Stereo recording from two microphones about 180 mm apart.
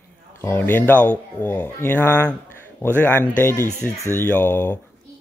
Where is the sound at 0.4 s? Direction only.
10° left (ahead or behind).